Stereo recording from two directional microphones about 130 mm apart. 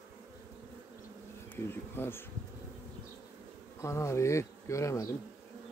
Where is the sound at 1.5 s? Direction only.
15° left (ahead or behind).